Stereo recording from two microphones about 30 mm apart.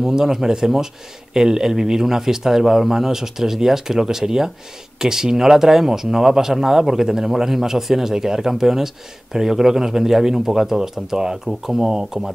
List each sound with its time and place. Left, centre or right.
0.1 s speech: centre